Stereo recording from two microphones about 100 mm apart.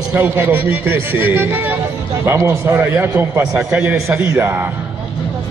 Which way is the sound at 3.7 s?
10° right (ahead or behind).